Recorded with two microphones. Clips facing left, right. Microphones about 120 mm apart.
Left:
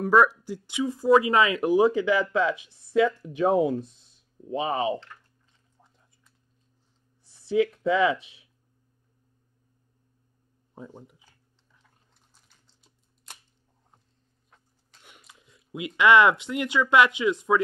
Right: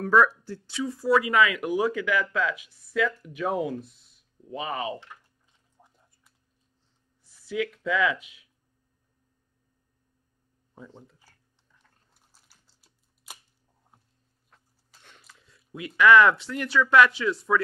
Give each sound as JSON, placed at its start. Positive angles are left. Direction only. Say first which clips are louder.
{"t": 0.0, "sound": "speech", "louder": "left 1 dB", "side_deg": 15}
{"t": 5.9, "sound": "a sound", "louder": "even", "side_deg": -10}
{"t": 7.3, "sound": "speech", "louder": "left 6 dB", "side_deg": 30}
{"t": 10.9, "sound": "speech", "louder": "left 3 dB", "side_deg": 15}
{"t": 12.1, "sound": "typing", "louder": "even", "side_deg": -5}
{"t": 15.0, "sound": "a sound", "louder": "left 1 dB", "side_deg": 15}
{"t": 16.0, "sound": "speech", "louder": "right 1 dB", "side_deg": 20}